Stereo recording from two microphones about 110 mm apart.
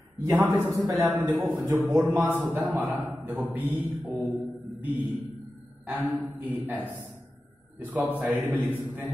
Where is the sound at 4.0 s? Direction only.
15° right (ahead or behind).